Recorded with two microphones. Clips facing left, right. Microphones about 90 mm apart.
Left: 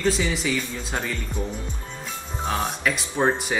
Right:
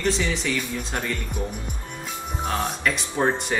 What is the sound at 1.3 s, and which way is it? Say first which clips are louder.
Speech: even; 15° right (ahead or behind).